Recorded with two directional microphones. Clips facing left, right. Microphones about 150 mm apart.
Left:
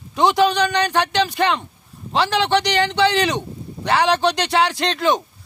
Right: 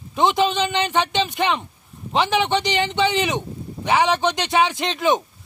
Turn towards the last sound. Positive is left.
turn(degrees=-15)  # may be behind; listen again after turning